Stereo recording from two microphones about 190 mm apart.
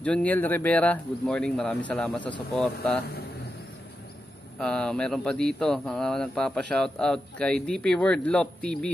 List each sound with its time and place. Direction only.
0.0 s speech: 5° left (ahead or behind)
4.6 s speech: 5° left (ahead or behind)